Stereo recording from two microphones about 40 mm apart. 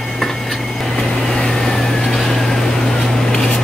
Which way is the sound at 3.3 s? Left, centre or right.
Centre.